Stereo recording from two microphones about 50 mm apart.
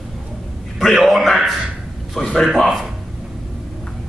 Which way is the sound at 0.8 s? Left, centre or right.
Centre.